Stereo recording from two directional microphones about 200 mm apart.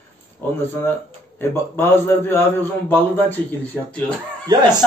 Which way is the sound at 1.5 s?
10° left (ahead or behind).